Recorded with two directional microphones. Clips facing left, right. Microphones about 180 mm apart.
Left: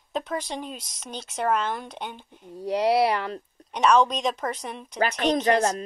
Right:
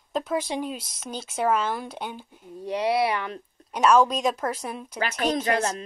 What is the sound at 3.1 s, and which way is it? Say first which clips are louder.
Speech: left 2 dB; 35° left (ahead or behind).